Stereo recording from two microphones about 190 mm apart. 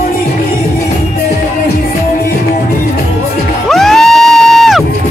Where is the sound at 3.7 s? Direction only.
Centre (ahead or behind).